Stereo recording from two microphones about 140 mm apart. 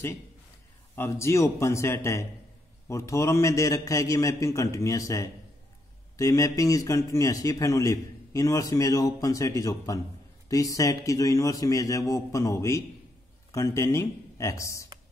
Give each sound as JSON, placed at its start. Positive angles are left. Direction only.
{"t": 0.9, "sound": "a man's voice", "side_deg": 20}